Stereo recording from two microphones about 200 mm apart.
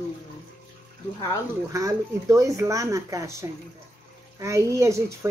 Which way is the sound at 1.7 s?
15° right (ahead or behind).